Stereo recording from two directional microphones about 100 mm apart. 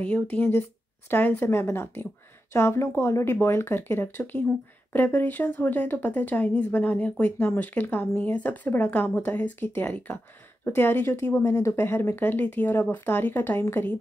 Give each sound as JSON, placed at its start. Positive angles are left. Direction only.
{"t": 0.0, "sound": "speech", "side_deg": 15}